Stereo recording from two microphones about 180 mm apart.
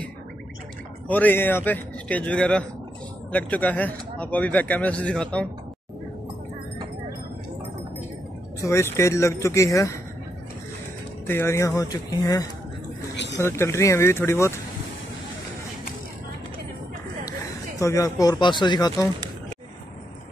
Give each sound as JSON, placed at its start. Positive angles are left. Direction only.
{"t": 1.0, "sound": "speech", "side_deg": 10}
{"t": 8.6, "sound": "speech", "side_deg": 15}
{"t": 11.2, "sound": "speech", "side_deg": 15}
{"t": 13.1, "sound": "a sound", "side_deg": 75}
{"t": 13.4, "sound": "speech", "side_deg": 15}
{"t": 17.7, "sound": "speech", "side_deg": 15}